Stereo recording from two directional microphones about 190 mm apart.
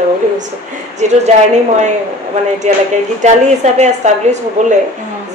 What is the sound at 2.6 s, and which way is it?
Speech, 40° right (ahead or behind).